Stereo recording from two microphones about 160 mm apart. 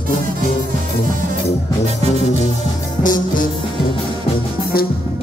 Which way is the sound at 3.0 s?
55° left (ahead or behind).